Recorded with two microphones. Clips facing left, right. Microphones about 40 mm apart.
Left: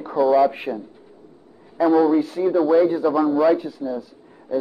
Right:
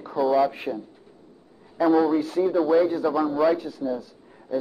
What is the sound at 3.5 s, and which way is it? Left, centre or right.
Speech, centre.